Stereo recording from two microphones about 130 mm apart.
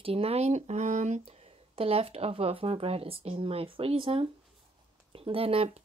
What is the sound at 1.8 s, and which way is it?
Speech, 50° right (ahead or behind).